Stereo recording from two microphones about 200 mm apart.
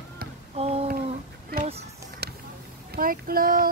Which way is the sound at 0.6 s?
30° right (ahead or behind).